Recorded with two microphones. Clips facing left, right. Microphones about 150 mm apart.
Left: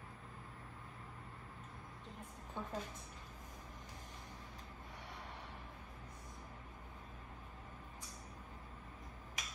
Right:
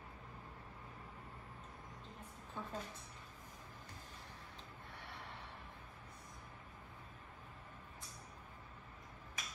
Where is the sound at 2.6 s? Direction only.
20° left (ahead or behind).